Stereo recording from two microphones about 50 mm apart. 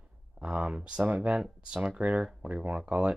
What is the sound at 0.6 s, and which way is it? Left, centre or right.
Speech, right.